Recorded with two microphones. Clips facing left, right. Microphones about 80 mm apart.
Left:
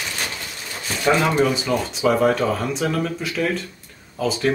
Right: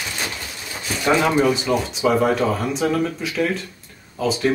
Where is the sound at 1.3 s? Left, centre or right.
Centre.